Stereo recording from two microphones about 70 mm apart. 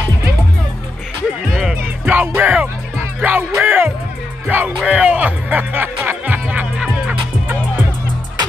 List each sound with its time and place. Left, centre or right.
1.5 s music: centre
2.0 s music: right